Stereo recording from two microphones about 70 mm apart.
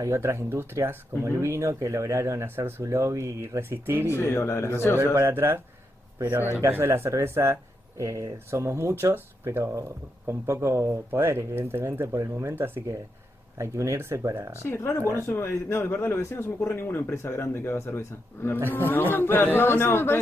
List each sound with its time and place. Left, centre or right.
0.0 s speech: right
2.8 s speech: right
3.6 s speech: right
4.1 s speech: left
4.9 s speech: right
6.8 s speech: right
8.0 s speech: right
11.1 s speech: right
12.5 s speech: right
13.6 s speech: right
14.7 s speech: left
18.7 s speech: left